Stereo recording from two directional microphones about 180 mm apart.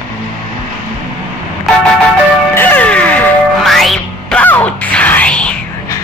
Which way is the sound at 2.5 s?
10° left (ahead or behind).